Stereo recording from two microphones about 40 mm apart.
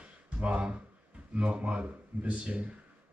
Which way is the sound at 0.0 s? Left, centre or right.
Right.